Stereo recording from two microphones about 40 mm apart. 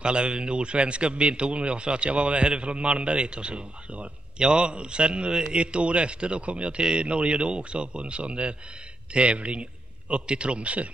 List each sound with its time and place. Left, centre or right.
0.0 s a man's voice: right